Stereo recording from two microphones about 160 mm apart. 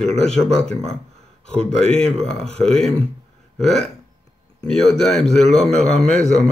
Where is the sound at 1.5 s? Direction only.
40° right (ahead or behind).